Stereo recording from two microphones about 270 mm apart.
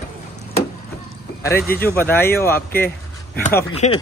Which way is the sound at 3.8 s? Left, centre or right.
Left.